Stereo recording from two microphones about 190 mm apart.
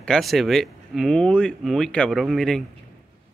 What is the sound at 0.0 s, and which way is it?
Speech, centre (ahead or behind).